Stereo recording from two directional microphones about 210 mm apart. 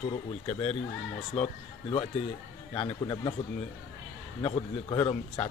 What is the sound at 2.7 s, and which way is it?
Speech, 20° left (ahead or behind).